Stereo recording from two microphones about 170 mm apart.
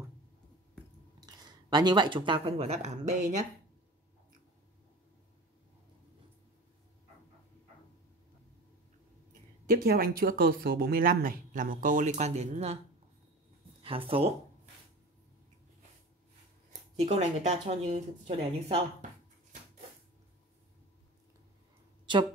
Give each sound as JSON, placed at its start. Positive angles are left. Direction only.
{"t": 1.2, "sound": "speech", "side_deg": -25}
{"t": 9.7, "sound": "speech", "side_deg": -60}
{"t": 13.8, "sound": "speech", "side_deg": -30}
{"t": 17.0, "sound": "speech", "side_deg": -40}